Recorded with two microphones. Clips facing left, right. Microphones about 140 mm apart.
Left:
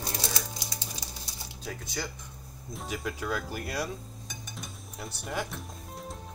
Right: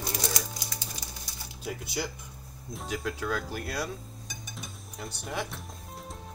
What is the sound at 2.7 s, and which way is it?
Speech, centre (ahead or behind).